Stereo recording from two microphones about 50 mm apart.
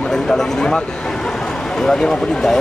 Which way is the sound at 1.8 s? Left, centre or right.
Centre.